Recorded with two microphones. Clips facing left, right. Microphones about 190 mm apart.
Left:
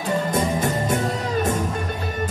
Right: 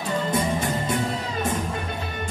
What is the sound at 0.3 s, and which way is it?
Music, 45° left (ahead or behind).